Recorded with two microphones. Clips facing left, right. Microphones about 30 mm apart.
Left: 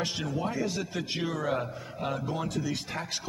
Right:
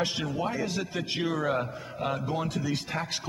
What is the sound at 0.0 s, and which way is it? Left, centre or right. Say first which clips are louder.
A man's voice: right 2 dB; centre.